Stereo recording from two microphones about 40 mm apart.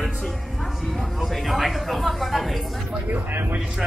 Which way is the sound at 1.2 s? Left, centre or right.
Centre.